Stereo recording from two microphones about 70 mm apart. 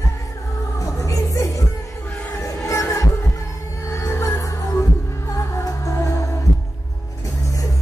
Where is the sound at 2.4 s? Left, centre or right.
Left.